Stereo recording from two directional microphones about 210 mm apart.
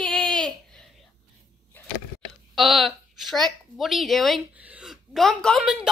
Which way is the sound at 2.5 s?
Centre (ahead or behind).